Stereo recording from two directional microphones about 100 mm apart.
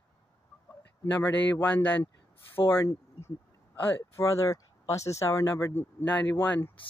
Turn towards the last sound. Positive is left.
turn(degrees=20)  # may be behind; listen again after turning